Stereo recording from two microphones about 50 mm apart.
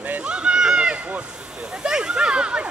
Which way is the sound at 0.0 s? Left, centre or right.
Right.